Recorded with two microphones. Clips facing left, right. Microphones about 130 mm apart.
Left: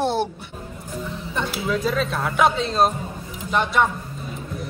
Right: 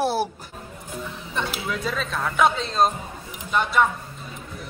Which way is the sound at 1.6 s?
Centre (ahead or behind).